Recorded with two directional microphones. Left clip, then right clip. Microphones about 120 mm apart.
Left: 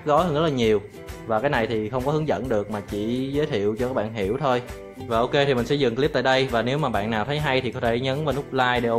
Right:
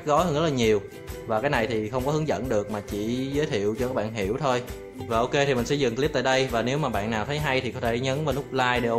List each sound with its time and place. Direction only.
0.0 s music: 15° left (ahead or behind)
5.1 s speech: 15° left (ahead or behind)